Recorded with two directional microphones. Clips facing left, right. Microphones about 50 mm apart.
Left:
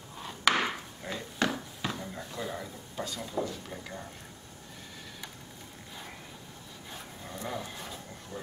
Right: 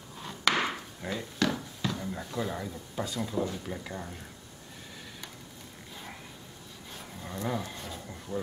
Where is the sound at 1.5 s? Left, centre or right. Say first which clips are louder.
Right 2 dB; centre.